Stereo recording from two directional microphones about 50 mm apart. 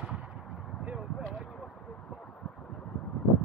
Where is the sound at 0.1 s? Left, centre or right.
Centre.